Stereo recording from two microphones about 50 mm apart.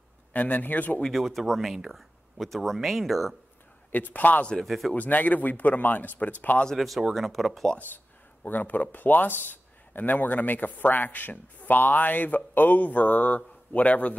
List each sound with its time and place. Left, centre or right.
0.3 s speech: left
1.0 s speech: centre
3.9 s speech: left
4.6 s speech: centre
4.9 s speech: left
7.2 s speech: centre
8.5 s speech: left